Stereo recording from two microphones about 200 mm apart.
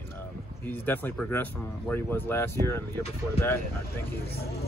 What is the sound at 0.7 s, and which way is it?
Speech, 10° left (ahead or behind).